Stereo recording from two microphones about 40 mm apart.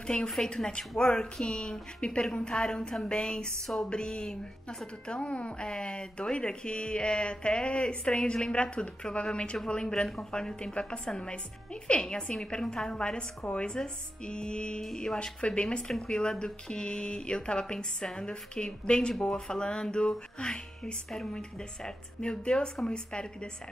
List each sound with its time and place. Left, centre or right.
0.4 s speech: centre
5.7 s speech: left
14.8 s speech: centre
15.1 s speech: left